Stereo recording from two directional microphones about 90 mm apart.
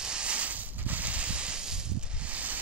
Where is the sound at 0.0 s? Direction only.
10° right (ahead or behind).